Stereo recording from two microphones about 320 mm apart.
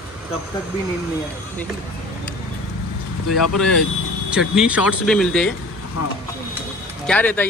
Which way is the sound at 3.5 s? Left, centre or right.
Centre.